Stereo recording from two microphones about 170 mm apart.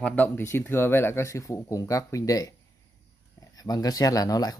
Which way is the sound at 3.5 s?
20° left (ahead or behind).